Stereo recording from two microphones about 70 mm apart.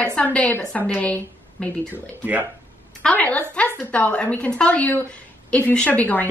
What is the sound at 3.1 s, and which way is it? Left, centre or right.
A woman's voice, left.